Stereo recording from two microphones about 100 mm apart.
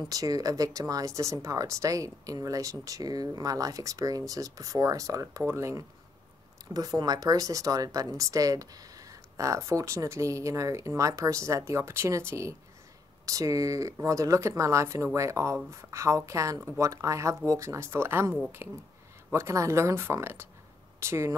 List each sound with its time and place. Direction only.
0.1 s speech: 40° right (ahead or behind)
6.7 s speech: 40° right (ahead or behind)